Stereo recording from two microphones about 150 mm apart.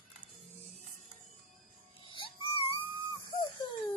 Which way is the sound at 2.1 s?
35° left (ahead or behind).